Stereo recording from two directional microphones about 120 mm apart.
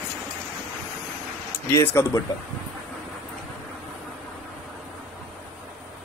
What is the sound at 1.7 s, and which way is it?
Speech, 25° left (ahead or behind).